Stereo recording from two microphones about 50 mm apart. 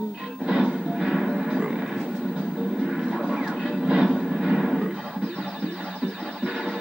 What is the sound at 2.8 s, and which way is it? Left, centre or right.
Vehicle, centre.